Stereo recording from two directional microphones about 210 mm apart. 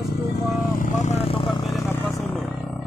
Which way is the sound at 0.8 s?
35° left (ahead or behind).